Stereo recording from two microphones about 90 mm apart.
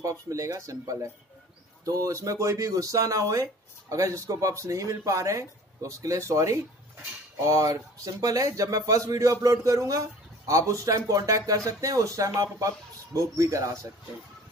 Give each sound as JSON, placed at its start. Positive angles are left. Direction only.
{"t": 0.0, "sound": "speech", "side_deg": -35}